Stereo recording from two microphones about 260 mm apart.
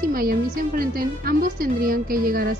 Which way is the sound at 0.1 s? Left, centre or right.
Right.